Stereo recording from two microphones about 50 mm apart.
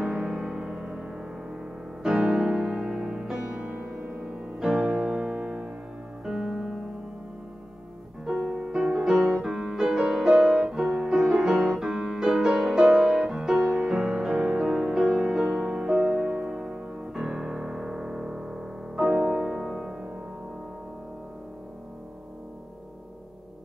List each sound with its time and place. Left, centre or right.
0.0 s music: centre
4.0 s music: right
4.6 s music: centre
8.3 s music: centre